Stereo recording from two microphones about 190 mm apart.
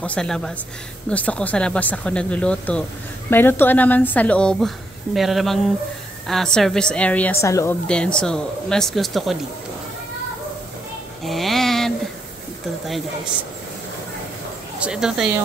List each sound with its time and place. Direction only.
0.0 s a woman's voice: 5° left (ahead or behind)
7.9 s speech: 5° left (ahead or behind)
11.2 s a sound: centre (ahead or behind)
14.8 s speech: 5° right (ahead or behind)